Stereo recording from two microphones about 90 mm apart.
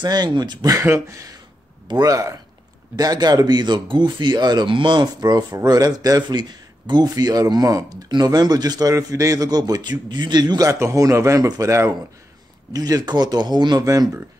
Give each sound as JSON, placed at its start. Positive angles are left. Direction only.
{"t": 0.0, "sound": "a man's voice", "side_deg": -55}
{"t": 0.8, "sound": "a man's voice", "side_deg": -35}
{"t": 12.7, "sound": "a man's voice", "side_deg": -45}
{"t": 13.8, "sound": "speech", "side_deg": -40}